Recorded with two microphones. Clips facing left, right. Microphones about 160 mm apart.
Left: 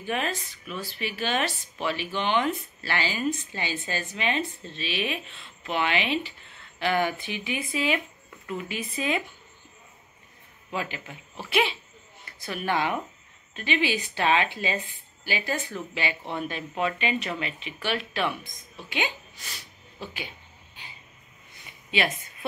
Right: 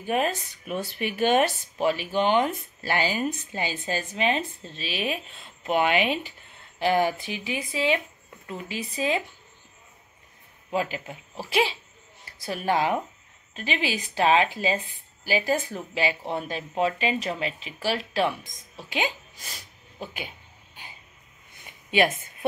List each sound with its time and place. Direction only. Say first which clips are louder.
0.0 s speech: right 4 dB; 45° right (ahead or behind)
10.7 s speech: right 5 dB; 40° right (ahead or behind)
21.9 s speech: right 5 dB; 45° right (ahead or behind)